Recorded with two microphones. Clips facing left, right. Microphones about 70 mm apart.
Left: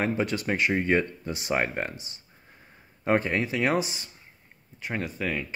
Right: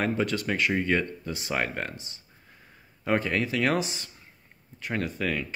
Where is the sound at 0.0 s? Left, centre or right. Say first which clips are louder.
Even; centre.